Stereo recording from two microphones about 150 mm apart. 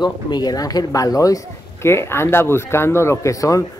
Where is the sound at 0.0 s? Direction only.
30° left (ahead or behind).